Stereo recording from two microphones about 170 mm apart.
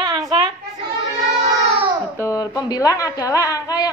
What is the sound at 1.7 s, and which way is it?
Baby cry, 30° right (ahead or behind).